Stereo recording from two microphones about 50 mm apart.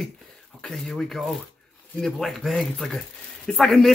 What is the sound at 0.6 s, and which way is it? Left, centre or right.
A man's voice, centre.